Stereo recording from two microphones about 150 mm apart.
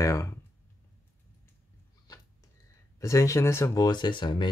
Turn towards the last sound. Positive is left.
turn(degrees=30)  # may be behind; listen again after turning